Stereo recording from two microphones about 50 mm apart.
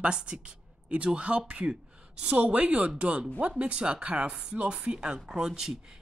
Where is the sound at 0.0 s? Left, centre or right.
Centre.